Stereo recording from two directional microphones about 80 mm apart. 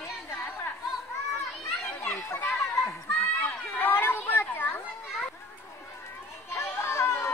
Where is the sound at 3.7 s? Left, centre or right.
Left.